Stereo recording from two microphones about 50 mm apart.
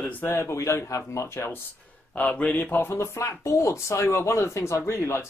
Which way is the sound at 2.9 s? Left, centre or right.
Left.